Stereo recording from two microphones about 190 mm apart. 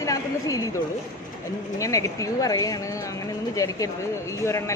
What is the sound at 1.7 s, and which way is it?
A woman's voice, 15° left (ahead or behind).